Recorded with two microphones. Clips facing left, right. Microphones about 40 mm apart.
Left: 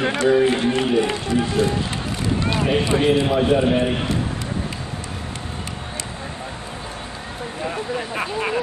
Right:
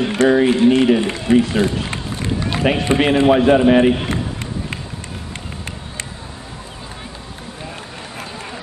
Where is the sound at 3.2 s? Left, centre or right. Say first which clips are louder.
Right 6 dB; right.